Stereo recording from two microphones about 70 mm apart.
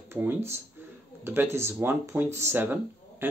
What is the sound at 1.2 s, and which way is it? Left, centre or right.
Speech, right.